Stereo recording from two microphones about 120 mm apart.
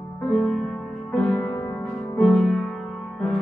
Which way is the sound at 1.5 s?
20° left (ahead or behind).